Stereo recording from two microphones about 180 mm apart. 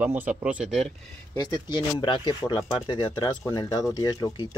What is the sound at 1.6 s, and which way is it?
Speech, 25° left (ahead or behind).